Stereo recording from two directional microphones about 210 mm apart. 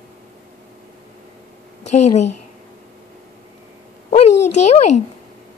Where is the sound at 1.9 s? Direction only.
35° left (ahead or behind).